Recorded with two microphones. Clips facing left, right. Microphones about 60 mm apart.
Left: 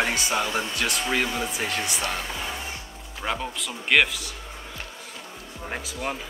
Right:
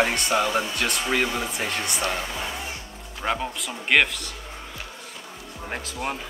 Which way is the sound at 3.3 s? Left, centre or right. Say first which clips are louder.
Right 2 dB; centre.